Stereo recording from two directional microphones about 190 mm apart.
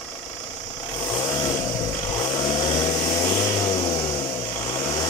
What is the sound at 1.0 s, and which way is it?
Vehicle, 20° left (ahead or behind).